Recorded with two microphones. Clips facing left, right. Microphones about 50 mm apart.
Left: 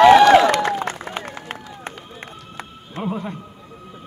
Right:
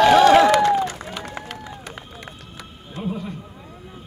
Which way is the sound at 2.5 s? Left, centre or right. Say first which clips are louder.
Left 4 dB; left.